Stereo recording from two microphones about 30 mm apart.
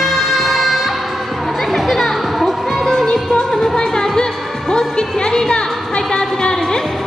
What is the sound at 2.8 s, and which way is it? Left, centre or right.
Music, centre.